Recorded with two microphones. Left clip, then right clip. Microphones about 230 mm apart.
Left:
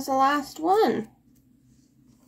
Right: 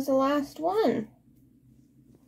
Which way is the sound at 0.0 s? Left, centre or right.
Left.